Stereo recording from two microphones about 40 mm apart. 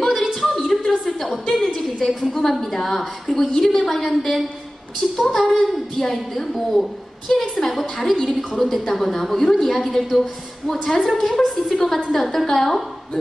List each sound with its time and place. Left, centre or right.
0.3 s a sound: centre
2.0 s a woman's voice: centre
3.6 s a woman's voice: centre
3.9 s a woman's voice: centre